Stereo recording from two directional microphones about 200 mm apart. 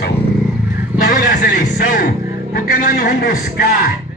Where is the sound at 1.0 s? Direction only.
45° left (ahead or behind).